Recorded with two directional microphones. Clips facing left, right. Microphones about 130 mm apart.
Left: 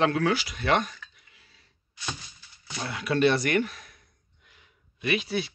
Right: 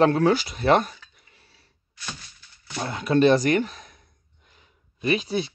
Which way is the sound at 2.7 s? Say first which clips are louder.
Right 6 dB; 35° right (ahead or behind).